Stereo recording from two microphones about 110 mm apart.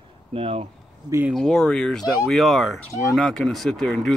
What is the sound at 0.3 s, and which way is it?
Speech, 65° right (ahead or behind).